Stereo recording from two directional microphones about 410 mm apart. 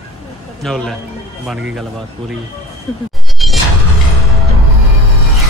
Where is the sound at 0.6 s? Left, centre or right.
Centre.